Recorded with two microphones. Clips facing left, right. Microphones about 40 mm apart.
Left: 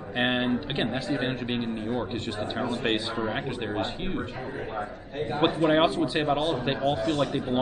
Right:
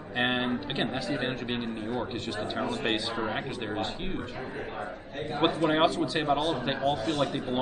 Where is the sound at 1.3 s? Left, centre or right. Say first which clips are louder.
Left 2 dB; centre.